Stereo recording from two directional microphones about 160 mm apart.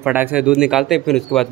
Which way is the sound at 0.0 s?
10° right (ahead or behind).